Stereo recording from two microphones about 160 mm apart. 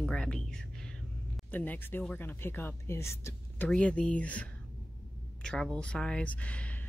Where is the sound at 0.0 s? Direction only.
5° left (ahead or behind).